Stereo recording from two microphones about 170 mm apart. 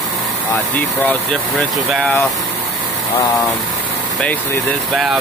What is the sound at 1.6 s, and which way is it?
Speech, 10° left (ahead or behind).